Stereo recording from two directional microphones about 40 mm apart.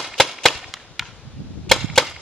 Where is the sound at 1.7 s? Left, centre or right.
Centre.